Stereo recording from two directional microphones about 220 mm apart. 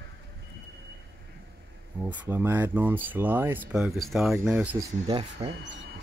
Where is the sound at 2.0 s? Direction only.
10° right (ahead or behind).